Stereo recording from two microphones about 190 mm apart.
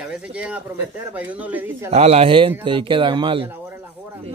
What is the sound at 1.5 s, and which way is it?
Speech, 10° right (ahead or behind).